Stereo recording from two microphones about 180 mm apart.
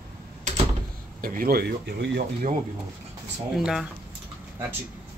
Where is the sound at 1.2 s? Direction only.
50° right (ahead or behind).